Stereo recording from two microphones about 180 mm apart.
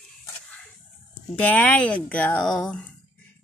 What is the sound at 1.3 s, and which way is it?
Speech, 10° left (ahead or behind).